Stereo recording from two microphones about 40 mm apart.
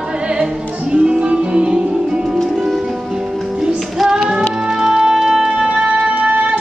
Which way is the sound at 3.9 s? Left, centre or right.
Centre.